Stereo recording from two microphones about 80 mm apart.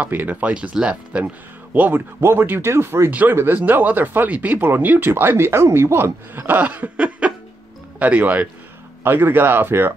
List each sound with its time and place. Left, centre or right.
0.0 s speech: right
3.1 s speech: centre